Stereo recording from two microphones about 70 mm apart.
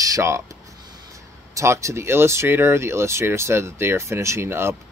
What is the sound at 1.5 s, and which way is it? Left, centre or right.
Speech, right.